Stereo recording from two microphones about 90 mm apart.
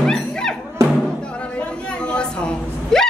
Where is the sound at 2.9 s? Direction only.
5° left (ahead or behind).